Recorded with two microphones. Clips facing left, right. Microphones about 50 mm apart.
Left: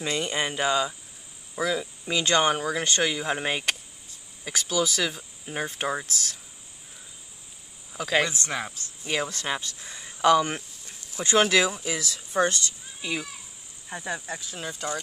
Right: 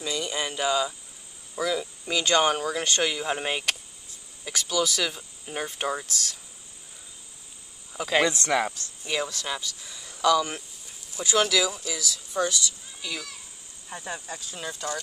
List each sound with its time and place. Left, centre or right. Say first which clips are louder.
0.0 s speech: left 2 dB; left
1.8 s speech: even; centre
7.9 s speech: right 1 dB; centre
8.3 s speech: right 6 dB; right
8.7 s speech: left 1 dB; left
10.9 s insect: left 2 dB; centre
11.2 s speech: left 2 dB; left
13.0 s speech: left 4 dB; left
14.6 s speech: even; centre